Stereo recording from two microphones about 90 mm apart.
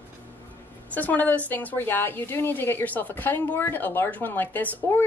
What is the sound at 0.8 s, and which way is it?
A woman's voice, 20° left (ahead or behind).